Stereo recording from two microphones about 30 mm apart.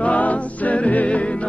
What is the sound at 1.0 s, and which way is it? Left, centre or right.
Music, left.